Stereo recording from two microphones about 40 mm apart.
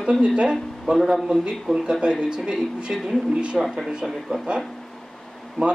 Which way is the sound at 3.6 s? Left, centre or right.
Centre.